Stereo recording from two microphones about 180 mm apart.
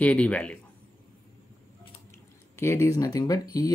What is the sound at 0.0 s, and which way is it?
Speech, 5° left (ahead or behind).